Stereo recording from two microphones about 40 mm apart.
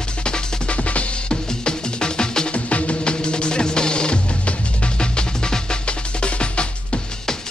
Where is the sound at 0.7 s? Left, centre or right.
Left.